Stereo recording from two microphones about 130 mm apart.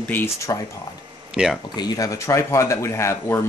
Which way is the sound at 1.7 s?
30° left (ahead or behind).